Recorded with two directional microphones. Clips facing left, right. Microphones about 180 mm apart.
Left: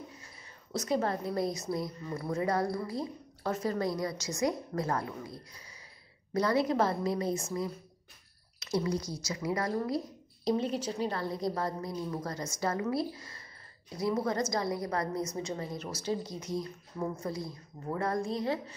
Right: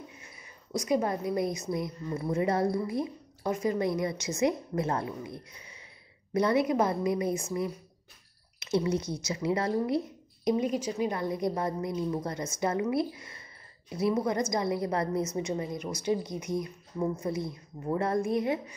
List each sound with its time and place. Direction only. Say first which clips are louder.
0.7 s a woman's voice: right 3 dB; 15° right (ahead or behind)
8.5 s speech: right 3 dB; 25° right (ahead or behind)
10.5 s a woman's voice: right 2 dB; 10° right (ahead or behind)